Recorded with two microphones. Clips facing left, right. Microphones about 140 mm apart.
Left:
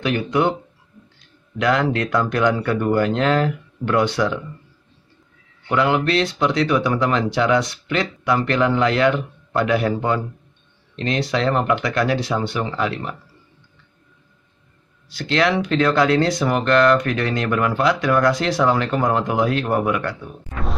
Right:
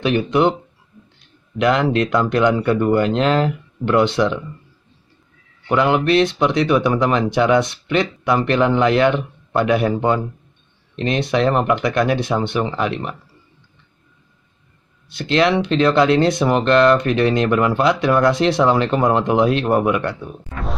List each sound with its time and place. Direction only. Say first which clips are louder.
0.0 s speech: right 3 dB; 25° right (ahead or behind)
1.6 s speech: right 3 dB; 20° right (ahead or behind)
5.7 s speech: right 3 dB; 20° right (ahead or behind)
15.1 s speech: right 3 dB; 20° right (ahead or behind)